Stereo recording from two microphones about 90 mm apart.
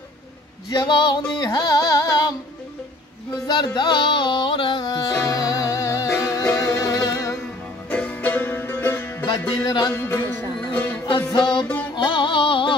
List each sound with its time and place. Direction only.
0.7 s female singing: 60° left (ahead or behind)
1.3 s music: 55° left (ahead or behind)
3.4 s music: 55° left (ahead or behind); by 7.3 s 35° left (ahead or behind)
7.9 s music: 15° left (ahead or behind)
9.7 s music: 55° left (ahead or behind)
9.9 s speech: 25° left (ahead or behind)
10.6 s music: 15° left (ahead or behind)
11.3 s music: 55° left (ahead or behind); by 12.7 s 75° left (ahead or behind)